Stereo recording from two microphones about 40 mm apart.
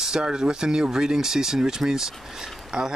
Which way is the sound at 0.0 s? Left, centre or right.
Centre.